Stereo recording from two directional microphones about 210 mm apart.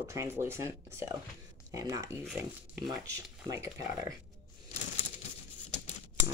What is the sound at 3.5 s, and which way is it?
Speech, 15° right (ahead or behind).